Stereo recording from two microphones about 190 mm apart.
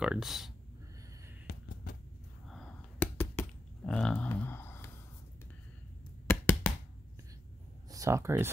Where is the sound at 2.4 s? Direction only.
5° left (ahead or behind).